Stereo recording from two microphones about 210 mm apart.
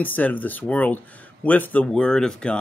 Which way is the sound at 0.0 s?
10° left (ahead or behind).